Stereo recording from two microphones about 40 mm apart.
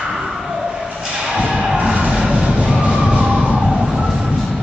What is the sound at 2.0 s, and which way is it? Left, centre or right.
Vehicle, centre.